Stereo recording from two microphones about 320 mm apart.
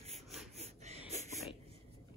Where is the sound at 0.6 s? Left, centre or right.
Centre.